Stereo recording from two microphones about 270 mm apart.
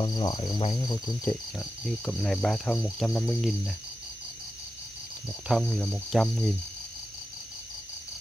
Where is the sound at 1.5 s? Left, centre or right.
Centre.